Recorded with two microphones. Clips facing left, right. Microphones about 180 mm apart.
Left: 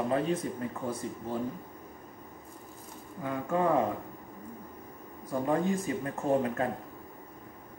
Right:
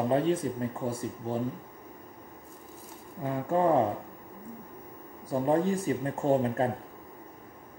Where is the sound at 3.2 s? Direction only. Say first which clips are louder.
Right 3 dB; 30° right (ahead or behind).